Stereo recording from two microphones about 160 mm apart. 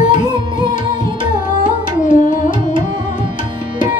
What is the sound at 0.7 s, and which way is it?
Carnatic music, 55° left (ahead or behind).